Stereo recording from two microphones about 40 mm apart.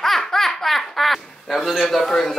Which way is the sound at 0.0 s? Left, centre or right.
Centre.